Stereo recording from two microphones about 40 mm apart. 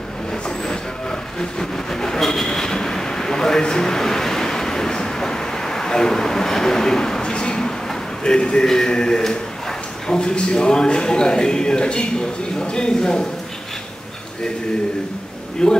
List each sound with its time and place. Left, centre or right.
1.4 s train: centre
8.2 s a man's voice: left
15.6 s a man's voice: centre